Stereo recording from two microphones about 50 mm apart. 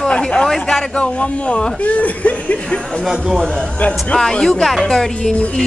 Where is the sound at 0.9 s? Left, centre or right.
Left.